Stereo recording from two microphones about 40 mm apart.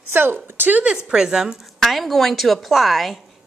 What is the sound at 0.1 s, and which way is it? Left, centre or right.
Speech, right.